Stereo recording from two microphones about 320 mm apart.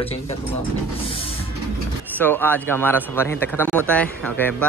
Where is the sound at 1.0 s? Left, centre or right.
Centre.